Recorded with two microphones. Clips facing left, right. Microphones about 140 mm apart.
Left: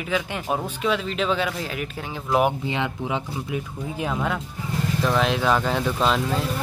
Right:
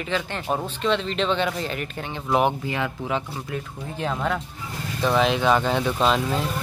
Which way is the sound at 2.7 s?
20° left (ahead or behind).